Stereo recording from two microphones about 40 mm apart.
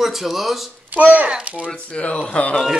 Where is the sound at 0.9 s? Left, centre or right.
Right.